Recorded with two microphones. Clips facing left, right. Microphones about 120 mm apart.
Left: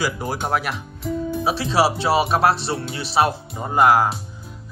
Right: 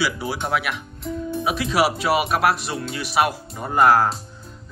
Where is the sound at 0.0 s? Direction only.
45° left (ahead or behind).